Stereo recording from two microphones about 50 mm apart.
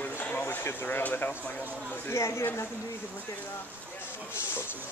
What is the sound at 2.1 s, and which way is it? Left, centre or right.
Speech, left.